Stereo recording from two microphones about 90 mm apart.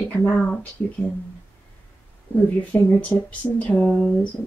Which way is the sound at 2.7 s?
25° left (ahead or behind).